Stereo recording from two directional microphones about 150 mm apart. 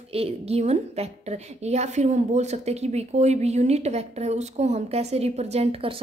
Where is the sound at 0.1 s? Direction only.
40° right (ahead or behind).